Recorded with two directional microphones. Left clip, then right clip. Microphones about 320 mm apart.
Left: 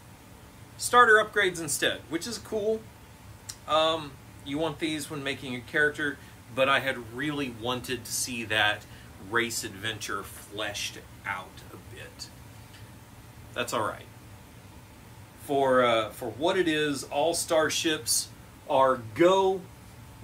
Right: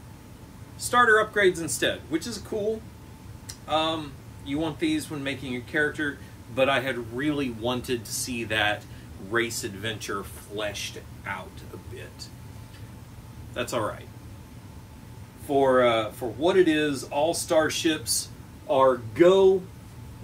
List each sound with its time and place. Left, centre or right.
0.7 s speech: centre
3.4 s speech: centre
13.6 s speech: centre
15.4 s speech: centre